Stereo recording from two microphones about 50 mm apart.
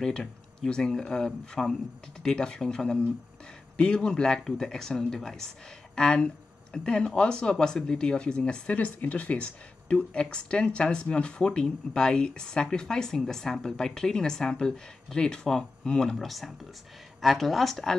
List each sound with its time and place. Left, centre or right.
0.0 s speech: centre
8.4 s speech: left
9.4 s speech: left; by 17.9 s centre